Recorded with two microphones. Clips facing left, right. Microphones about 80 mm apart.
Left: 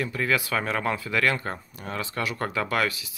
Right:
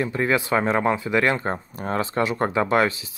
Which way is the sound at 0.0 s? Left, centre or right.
Right.